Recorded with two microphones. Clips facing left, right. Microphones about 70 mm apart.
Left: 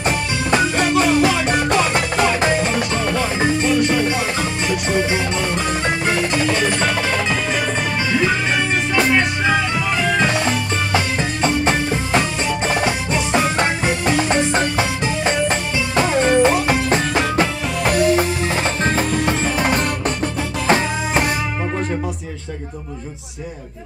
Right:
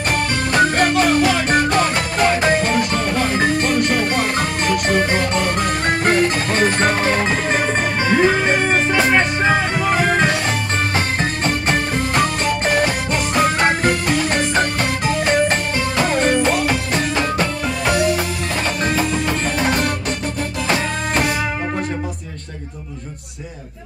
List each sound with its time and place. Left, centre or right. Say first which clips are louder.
0.6 s music: right 3 dB; right
17.8 s music: left 1 dB; left